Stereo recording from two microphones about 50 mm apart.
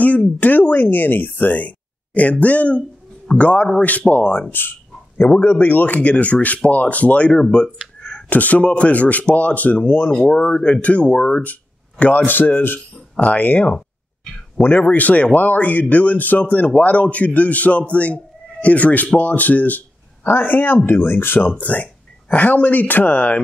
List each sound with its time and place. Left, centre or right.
0.4 s speech: left
4.5 s speech: left
12.3 s speech: left
21.4 s speech: left